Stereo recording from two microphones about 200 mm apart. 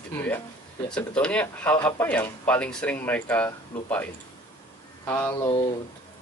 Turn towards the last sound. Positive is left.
turn(degrees=20)  # may be behind; listen again after turning